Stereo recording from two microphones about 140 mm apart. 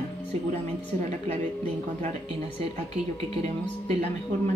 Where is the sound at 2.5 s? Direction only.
45° right (ahead or behind).